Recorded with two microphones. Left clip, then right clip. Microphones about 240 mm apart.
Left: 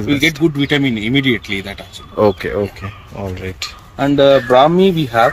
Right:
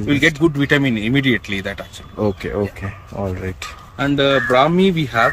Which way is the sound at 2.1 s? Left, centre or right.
Centre.